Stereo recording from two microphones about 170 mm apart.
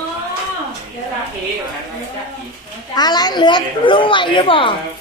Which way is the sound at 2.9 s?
25° left (ahead or behind).